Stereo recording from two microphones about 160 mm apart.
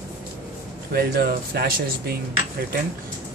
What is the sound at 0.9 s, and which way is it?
Speech, 75° right (ahead or behind).